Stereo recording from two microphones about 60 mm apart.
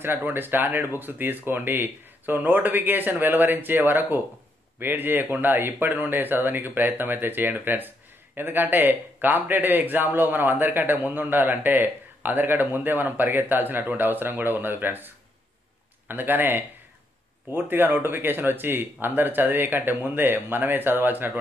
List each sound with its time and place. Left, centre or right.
0.0 s a man's voice: right